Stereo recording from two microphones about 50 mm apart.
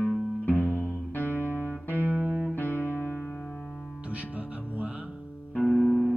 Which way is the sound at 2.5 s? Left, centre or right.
Left.